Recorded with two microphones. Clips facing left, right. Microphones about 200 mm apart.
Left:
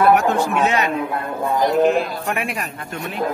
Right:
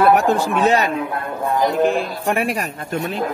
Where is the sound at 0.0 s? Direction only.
30° right (ahead or behind).